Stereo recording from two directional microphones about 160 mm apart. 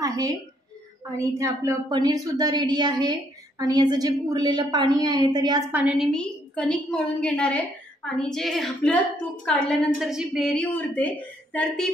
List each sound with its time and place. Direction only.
0.0 s a sound: 20° right (ahead or behind)
1.2 s speech: 20° right (ahead or behind)
5.7 s a woman's voice: 10° right (ahead or behind)
6.1 s a woman's voice: 5° left (ahead or behind)
9.9 s a woman's voice: 5° right (ahead or behind)